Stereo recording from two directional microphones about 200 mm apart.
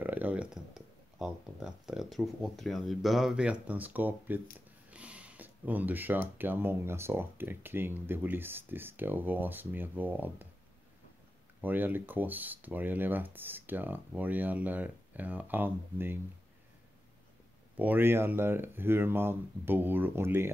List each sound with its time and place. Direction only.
0.0 s speech: 10° right (ahead or behind)
11.6 s speech: 10° right (ahead or behind)
17.7 s speech: 10° right (ahead or behind)